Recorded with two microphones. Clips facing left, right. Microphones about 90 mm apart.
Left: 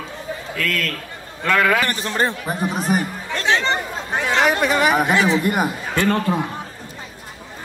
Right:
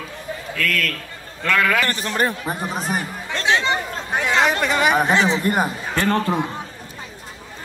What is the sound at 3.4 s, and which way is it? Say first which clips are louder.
Chatter: even; 20° right (ahead or behind).